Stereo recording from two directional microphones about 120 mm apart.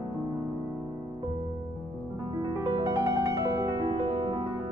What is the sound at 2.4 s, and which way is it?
Music, 40° right (ahead or behind).